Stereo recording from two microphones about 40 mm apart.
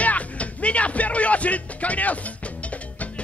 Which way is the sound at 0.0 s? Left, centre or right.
Left.